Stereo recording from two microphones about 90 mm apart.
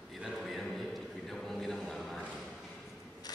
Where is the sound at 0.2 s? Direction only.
Centre (ahead or behind).